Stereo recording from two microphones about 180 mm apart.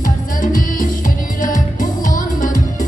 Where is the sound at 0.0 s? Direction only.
50° left (ahead or behind).